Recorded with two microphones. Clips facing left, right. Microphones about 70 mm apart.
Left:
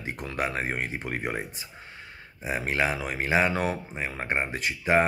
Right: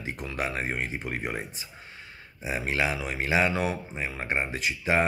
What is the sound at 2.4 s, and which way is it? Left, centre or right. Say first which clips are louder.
Speech: left 1 dB; left.